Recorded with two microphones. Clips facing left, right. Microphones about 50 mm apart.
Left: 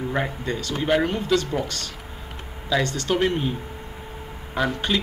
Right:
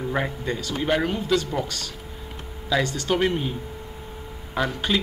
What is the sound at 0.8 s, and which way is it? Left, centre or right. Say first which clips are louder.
Speech: left 2 dB; centre.